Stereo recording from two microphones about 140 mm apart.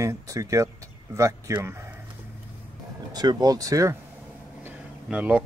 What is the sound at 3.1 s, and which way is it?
Speech, 30° right (ahead or behind).